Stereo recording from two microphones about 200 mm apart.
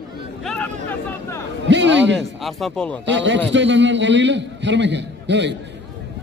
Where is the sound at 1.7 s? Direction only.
65° right (ahead or behind).